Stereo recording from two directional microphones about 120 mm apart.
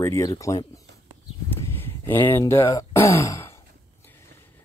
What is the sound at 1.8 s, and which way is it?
Speech, 20° left (ahead or behind).